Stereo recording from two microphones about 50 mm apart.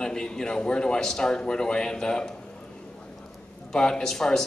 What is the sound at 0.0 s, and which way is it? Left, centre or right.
Speech, centre.